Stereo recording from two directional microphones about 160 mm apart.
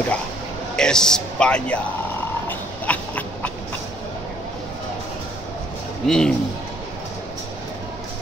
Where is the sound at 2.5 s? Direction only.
10° left (ahead or behind).